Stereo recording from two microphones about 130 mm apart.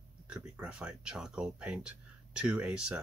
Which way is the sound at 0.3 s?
10° right (ahead or behind).